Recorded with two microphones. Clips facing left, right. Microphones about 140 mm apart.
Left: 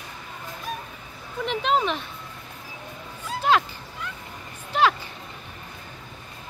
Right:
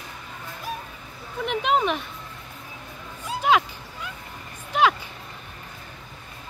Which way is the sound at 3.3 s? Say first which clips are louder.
Right 1 dB; 10° right (ahead or behind).